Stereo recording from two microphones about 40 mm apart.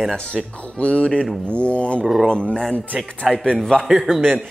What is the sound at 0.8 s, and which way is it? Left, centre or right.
Speech, left.